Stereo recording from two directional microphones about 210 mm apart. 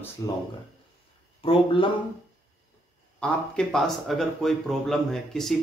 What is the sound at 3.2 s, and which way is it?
Speech, 5° left (ahead or behind).